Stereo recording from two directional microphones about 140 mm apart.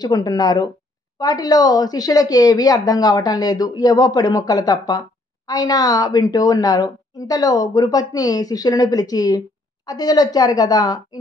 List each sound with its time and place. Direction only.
0.0 s a woman's voice: 25° left (ahead or behind)